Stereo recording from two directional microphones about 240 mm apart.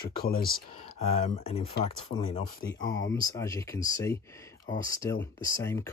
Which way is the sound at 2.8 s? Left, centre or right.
Left.